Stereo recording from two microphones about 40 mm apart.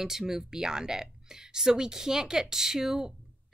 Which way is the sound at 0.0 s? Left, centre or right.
Centre.